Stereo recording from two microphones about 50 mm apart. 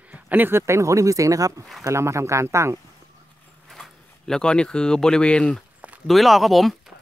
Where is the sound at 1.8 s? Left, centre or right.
Right.